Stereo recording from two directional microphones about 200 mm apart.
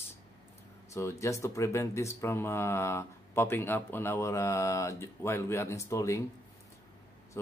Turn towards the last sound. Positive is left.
turn(degrees=15)  # may be behind; listen again after turning